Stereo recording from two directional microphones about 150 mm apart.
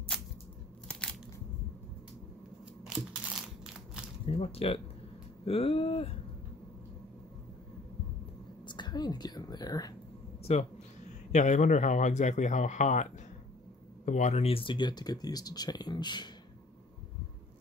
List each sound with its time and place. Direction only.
0.8 s crunch: 5° left (ahead or behind)
2.8 s crushing: 5° right (ahead or behind)
3.6 s a sound: 5° right (ahead or behind)
4.3 s speech: 40° left (ahead or behind)
8.6 s a woman's voice: 30° left (ahead or behind)
10.4 s speech: 45° left (ahead or behind); by 16.3 s 30° left (ahead or behind)